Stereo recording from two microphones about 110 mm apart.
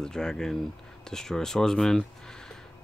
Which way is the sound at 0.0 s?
5° left (ahead or behind).